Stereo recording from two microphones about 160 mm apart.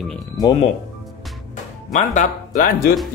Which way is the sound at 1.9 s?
45° left (ahead or behind).